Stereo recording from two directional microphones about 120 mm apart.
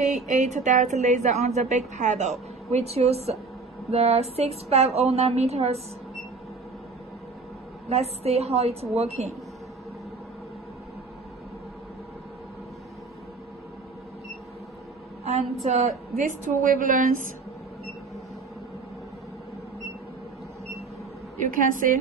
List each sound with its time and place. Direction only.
0.0 s speech: 75° right (ahead or behind)
2.7 s a woman's voice: 60° right (ahead or behind)
7.9 s a woman's voice: 60° right (ahead or behind)
15.2 s speech: 65° right (ahead or behind); by 17.0 s 90° right
21.4 s a woman's voice: 90° right